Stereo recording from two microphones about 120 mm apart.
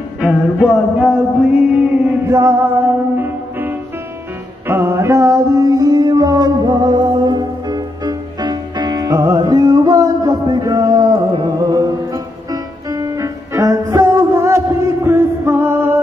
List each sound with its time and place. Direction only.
0.2 s music: 5° right (ahead or behind); by 16.0 s 20° right (ahead or behind)